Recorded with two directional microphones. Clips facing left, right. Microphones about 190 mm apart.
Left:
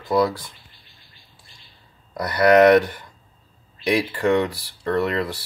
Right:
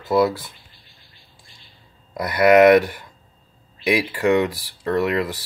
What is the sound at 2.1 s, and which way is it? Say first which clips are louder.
Speech: right 1 dB; 10° right (ahead or behind).